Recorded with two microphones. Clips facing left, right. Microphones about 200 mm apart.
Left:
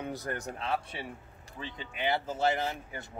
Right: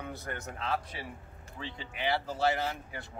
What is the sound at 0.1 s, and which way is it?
Speech, 35° left (ahead or behind).